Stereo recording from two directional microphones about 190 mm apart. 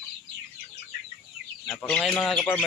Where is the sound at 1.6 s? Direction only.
Centre (ahead or behind).